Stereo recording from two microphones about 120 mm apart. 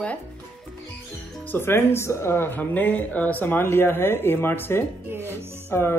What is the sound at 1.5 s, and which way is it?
Speech, 20° left (ahead or behind).